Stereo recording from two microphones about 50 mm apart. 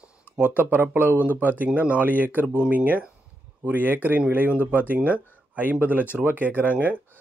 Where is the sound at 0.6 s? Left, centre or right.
Right.